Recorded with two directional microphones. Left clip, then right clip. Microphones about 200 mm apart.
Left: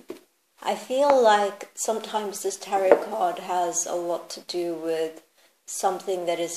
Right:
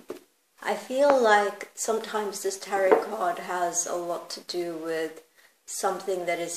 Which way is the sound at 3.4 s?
25° left (ahead or behind).